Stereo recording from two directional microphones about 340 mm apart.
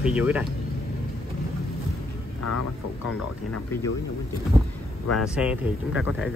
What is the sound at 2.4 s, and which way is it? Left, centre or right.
Speech, left.